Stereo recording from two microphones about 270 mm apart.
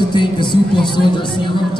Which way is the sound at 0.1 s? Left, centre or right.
Centre.